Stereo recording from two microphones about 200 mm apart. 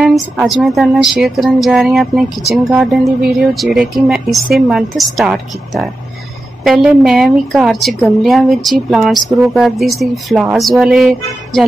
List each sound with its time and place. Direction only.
0.0 s speech: centre (ahead or behind)